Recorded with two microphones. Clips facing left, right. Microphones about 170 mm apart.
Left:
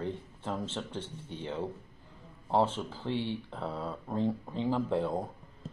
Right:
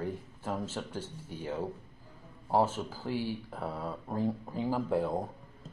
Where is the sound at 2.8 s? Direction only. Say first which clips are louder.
Even; 5° right (ahead or behind).